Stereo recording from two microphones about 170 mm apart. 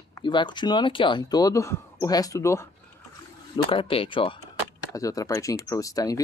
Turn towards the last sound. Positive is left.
turn(degrees=20)  # may be behind; listen again after turning